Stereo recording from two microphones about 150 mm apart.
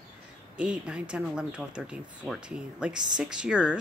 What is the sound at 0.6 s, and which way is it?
Speech, 5° right (ahead or behind).